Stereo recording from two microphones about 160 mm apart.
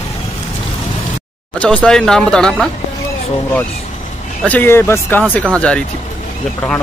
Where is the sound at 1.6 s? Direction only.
5° left (ahead or behind).